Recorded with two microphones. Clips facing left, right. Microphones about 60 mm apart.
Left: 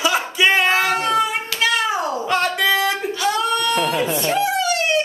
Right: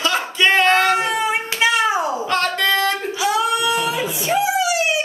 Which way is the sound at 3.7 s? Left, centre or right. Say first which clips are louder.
Left 1 dB; left.